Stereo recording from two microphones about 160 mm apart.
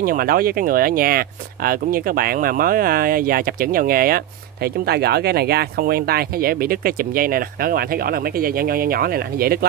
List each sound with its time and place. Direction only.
0.0 s speech: 65° right (ahead or behind)
4.6 s speech: 85° right